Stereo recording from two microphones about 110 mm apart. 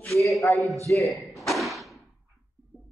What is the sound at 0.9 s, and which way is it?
Tap, centre (ahead or behind).